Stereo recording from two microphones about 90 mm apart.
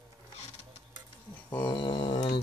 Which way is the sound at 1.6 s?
70° left (ahead or behind).